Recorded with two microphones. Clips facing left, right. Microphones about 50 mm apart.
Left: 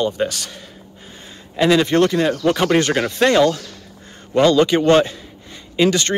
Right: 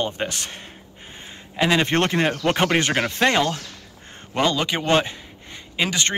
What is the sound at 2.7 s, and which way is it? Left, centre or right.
A man's voice, centre.